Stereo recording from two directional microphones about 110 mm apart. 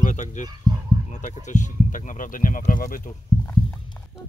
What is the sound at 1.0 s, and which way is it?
Speech, 90° left.